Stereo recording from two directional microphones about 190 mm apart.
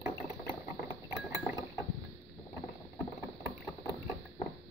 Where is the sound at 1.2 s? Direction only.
15° right (ahead or behind).